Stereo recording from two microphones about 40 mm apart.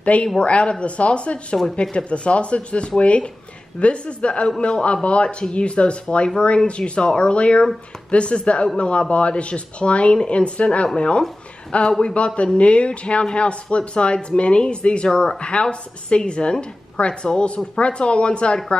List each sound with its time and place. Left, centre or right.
0.0 s a woman's voice: left
15.0 s speech: centre
15.4 s speech: left